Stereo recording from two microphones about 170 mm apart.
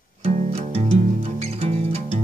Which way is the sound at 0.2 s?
40° right (ahead or behind).